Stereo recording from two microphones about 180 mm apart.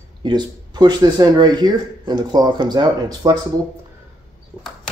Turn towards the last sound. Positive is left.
turn(degrees=-20)  # may be behind; listen again after turning